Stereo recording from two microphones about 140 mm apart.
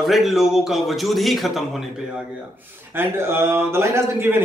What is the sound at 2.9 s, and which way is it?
A man's voice, 15° right (ahead or behind).